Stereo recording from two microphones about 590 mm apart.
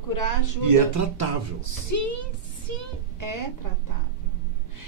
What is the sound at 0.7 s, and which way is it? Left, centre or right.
Speech, right.